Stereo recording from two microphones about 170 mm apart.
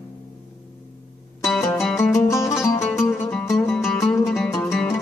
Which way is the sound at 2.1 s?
15° left (ahead or behind).